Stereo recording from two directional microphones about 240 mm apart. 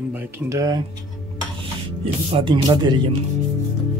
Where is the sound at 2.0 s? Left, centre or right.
Right.